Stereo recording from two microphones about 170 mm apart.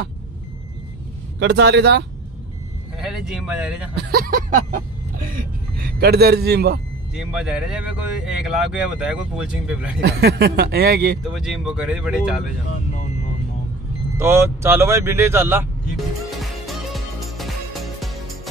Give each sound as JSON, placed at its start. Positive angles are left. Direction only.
{"t": 1.4, "sound": "speech", "side_deg": -80}
{"t": 3.1, "sound": "speech", "side_deg": -5}
{"t": 3.9, "sound": "speech", "side_deg": -70}
{"t": 7.2, "sound": "speech", "side_deg": -5}
{"t": 9.9, "sound": "speech", "side_deg": -70}
{"t": 11.2, "sound": "speech", "side_deg": 0}
{"t": 14.1, "sound": "speech", "side_deg": -15}
{"t": 16.3, "sound": "music", "side_deg": 0}